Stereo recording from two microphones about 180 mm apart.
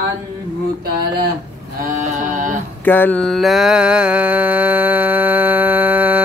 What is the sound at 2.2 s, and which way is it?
Mantra, 45° right (ahead or behind).